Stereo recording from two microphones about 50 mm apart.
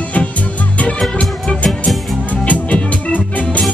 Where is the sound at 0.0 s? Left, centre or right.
Left.